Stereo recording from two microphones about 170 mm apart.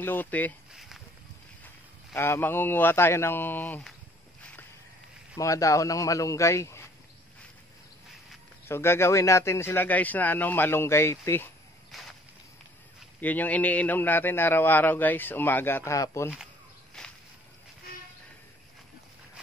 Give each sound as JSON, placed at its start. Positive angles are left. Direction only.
{"t": 0.0, "sound": "a man's voice", "side_deg": 10}
{"t": 0.7, "sound": "a sound", "side_deg": 0}
{"t": 2.1, "sound": "a man's voice", "side_deg": 15}
{"t": 5.4, "sound": "speech", "side_deg": 20}
{"t": 8.6, "sound": "a man's voice", "side_deg": 15}
{"t": 11.9, "sound": "a sound", "side_deg": 0}
{"t": 13.2, "sound": "a man's voice", "side_deg": 10}
{"t": 17.0, "sound": "walk", "side_deg": 5}